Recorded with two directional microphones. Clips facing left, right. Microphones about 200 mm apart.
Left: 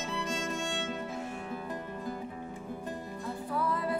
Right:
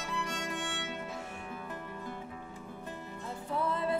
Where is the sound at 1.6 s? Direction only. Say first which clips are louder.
Left 4 dB; 35° left (ahead or behind).